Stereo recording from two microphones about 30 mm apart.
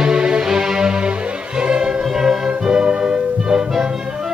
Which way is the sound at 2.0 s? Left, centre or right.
Centre.